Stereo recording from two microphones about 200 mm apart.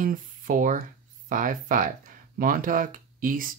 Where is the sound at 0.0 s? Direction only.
45° right (ahead or behind).